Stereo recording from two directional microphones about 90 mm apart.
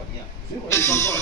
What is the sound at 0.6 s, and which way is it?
Music, 30° left (ahead or behind).